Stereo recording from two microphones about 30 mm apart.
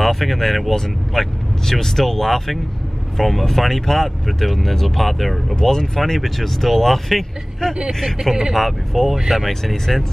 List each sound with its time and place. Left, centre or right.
0.0 s speech: centre
5.6 s speech: centre
6.0 s speech: centre